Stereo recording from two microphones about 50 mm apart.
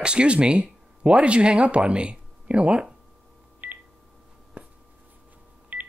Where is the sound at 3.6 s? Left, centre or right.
Right.